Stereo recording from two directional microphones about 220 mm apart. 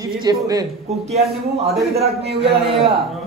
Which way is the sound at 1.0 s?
30° right (ahead or behind).